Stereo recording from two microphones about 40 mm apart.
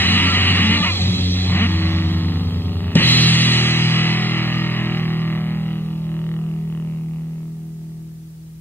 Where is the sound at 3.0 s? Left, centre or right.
Left.